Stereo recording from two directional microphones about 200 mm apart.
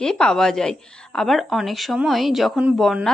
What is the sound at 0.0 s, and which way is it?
Speech, centre (ahead or behind).